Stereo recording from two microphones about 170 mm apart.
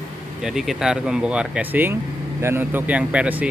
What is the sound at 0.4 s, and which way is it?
Speech, centre (ahead or behind).